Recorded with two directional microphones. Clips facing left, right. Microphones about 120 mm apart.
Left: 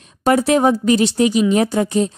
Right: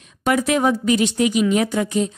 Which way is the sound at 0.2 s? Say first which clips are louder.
Left 4 dB; 35° left (ahead or behind).